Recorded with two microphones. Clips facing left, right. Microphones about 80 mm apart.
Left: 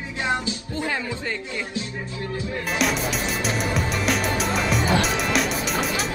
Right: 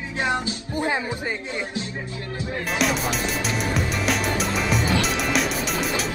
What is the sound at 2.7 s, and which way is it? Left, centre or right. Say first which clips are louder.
Speech: right 1 dB; centre.